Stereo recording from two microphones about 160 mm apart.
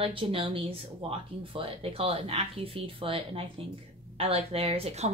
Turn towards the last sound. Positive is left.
turn(degrees=-40)  # may be behind; listen again after turning